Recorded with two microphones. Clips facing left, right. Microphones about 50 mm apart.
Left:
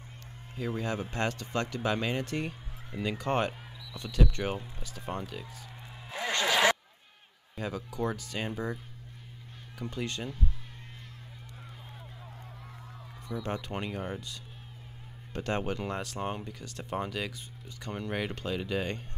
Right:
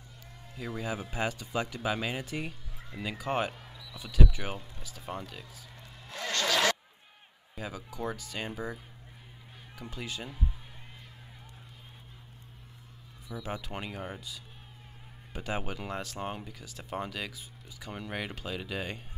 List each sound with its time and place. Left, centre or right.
0.7 s speech: centre
3.5 s basketball bounce: centre
3.8 s speech: centre
5.8 s a sound: centre
7.5 s speech: centre
13.3 s speech: centre